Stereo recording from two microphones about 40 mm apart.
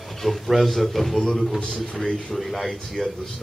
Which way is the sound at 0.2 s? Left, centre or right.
Centre.